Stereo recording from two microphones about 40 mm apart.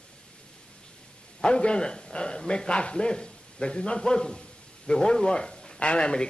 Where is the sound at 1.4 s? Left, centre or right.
Left.